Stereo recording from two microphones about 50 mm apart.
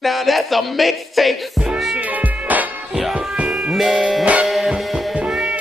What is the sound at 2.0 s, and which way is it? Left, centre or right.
Music, right.